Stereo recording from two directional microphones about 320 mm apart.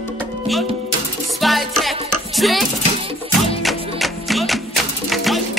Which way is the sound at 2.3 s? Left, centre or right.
Centre.